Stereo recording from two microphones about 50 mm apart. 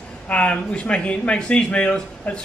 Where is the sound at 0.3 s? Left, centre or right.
Left.